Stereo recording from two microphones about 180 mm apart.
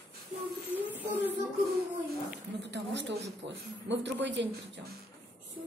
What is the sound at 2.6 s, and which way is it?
Speech, 75° right (ahead or behind).